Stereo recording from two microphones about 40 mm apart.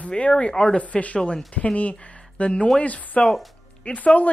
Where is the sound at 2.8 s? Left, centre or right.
Left.